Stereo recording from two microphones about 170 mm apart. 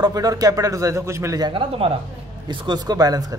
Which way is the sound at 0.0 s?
20° right (ahead or behind).